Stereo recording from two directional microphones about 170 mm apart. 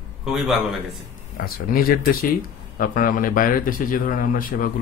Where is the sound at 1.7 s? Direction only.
55° left (ahead or behind).